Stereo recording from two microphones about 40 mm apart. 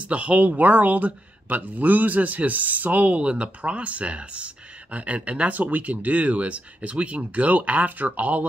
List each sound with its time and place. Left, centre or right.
0.0 s speech: right
5.5 s speech: right